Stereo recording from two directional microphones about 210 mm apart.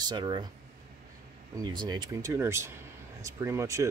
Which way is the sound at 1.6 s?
20° right (ahead or behind).